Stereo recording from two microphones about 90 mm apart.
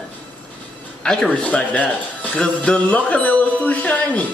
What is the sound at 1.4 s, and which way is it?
A man's voice, 15° left (ahead or behind).